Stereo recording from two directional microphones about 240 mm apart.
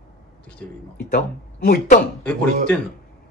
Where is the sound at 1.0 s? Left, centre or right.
Left.